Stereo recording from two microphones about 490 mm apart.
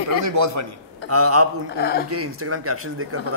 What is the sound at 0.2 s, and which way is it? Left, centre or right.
Speech, right.